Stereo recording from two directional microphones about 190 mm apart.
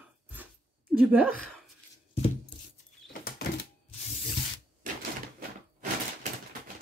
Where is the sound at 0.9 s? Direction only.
10° right (ahead or behind).